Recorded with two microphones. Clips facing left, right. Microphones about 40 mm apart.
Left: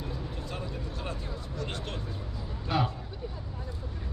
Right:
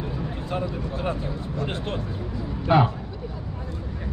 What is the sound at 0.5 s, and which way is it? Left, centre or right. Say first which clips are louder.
A man's voice: right 12 dB; right.